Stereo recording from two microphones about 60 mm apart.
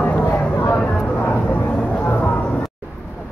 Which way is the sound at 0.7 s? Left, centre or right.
Left.